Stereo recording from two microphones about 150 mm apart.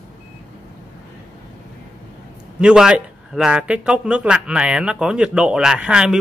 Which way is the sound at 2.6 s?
5° right (ahead or behind).